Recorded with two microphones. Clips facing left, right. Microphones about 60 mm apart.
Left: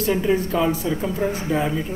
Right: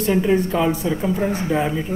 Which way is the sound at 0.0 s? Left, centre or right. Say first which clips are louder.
Right 2 dB; centre.